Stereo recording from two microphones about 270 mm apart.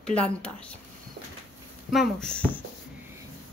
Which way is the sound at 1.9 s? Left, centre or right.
Centre.